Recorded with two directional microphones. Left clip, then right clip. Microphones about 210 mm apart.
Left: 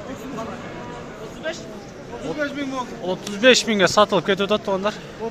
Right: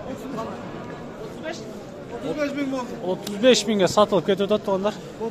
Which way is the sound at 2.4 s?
50° right (ahead or behind).